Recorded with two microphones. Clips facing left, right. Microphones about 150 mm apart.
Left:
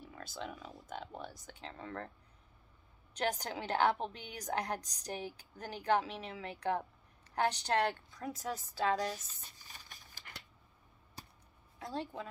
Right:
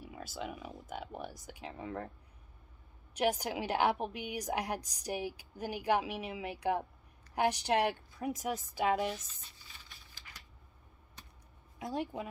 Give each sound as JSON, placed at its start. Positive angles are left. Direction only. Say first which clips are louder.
{"t": 0.0, "sound": "a woman's voice", "louder": "right 3 dB", "side_deg": -10}
{"t": 3.2, "sound": "a woman's voice", "louder": "right 4 dB", "side_deg": -10}
{"t": 9.4, "sound": "a sound", "louder": "left 1 dB", "side_deg": 45}
{"t": 11.8, "sound": "a woman's voice", "louder": "right 4 dB", "side_deg": -15}